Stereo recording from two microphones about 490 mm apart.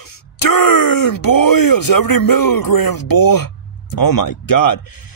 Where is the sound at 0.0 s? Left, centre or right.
Left.